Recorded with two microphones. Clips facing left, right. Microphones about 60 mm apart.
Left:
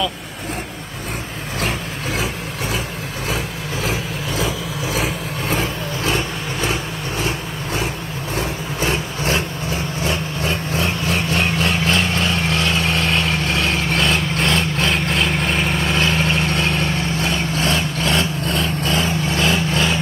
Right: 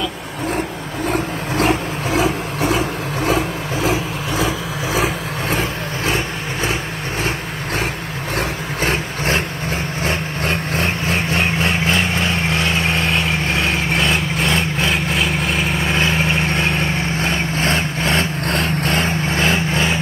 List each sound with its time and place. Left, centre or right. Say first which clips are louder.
1.6 s vehicle: right 6 dB; right
7.2 s vehicle: right 1 dB; right
8.8 s vehicle: right 1 dB; right
10.9 s vehicle: right 1 dB; right
14.9 s vehicle: even; centre
15.8 s vehicle: right 1 dB; right
18.4 s vehicle: right 2 dB; right
19.2 s vehicle: right 1 dB; right